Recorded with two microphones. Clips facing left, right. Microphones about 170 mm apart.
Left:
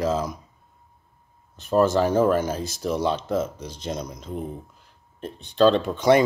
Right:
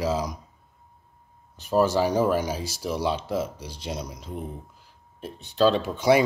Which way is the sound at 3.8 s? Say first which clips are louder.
Left 3 dB; 10° right (ahead or behind).